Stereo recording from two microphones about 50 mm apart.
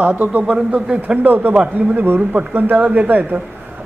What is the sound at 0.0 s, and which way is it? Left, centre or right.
Speech, right.